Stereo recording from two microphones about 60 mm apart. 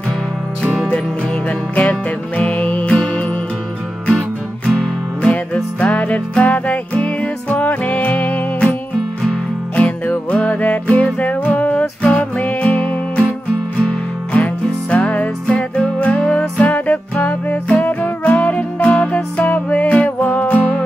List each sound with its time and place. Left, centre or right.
1.8 s music: left
4.6 s music: centre
5.3 s music: left
9.8 s music: centre